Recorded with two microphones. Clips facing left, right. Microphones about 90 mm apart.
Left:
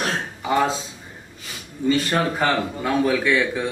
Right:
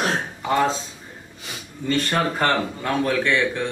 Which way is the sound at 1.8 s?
5° left (ahead or behind).